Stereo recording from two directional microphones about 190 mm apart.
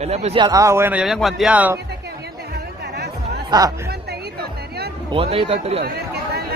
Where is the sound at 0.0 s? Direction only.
35° right (ahead or behind).